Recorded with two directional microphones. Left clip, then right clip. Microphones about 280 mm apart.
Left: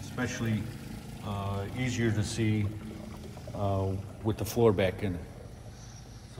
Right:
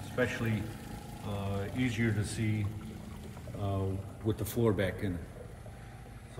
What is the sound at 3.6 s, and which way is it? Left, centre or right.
Speech, left.